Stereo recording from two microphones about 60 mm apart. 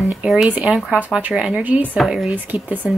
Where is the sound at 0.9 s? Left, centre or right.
Centre.